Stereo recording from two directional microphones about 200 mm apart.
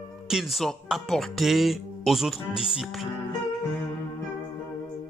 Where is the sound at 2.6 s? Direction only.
Centre (ahead or behind).